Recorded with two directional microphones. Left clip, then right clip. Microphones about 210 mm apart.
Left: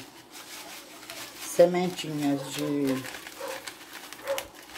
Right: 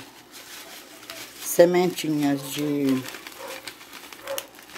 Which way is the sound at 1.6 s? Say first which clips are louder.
Right 4 dB; 55° right (ahead or behind).